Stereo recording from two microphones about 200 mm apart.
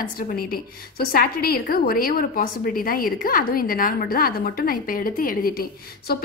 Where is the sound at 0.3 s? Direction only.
50° left (ahead or behind).